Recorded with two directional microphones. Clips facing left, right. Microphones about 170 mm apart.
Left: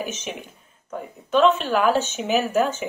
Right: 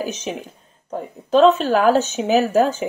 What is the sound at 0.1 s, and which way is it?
Speech, 35° right (ahead or behind).